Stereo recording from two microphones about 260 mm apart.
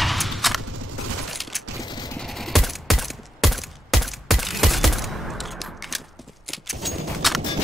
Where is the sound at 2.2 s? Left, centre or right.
Centre.